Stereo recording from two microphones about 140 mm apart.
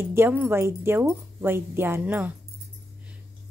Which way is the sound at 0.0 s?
15° right (ahead or behind).